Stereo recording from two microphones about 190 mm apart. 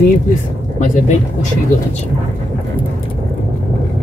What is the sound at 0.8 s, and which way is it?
Speech, 40° left (ahead or behind).